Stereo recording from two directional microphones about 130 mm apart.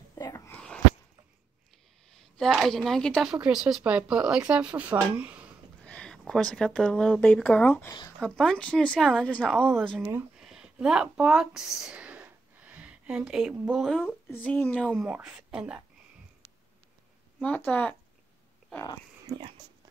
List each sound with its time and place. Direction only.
0.1 s whispering: 30° left (ahead or behind)
0.5 s a sound: 5° left (ahead or behind)
2.3 s speech: centre (ahead or behind)
3.3 s speech: 10° right (ahead or behind)
5.9 s speech: 5° left (ahead or behind)
10.3 s a sound: 5° right (ahead or behind)
14.3 s speech: 15° left (ahead or behind)
15.0 s speech: 15° right (ahead or behind)
17.4 s speech: 10° left (ahead or behind)